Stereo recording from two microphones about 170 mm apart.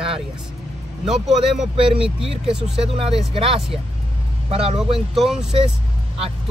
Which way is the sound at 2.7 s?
35° right (ahead or behind).